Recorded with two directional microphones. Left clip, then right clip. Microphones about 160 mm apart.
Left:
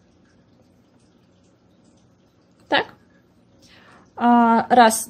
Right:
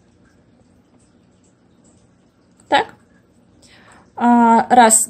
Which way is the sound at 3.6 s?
20° left (ahead or behind).